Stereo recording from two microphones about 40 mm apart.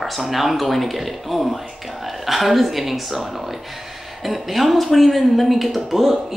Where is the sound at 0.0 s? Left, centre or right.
Centre.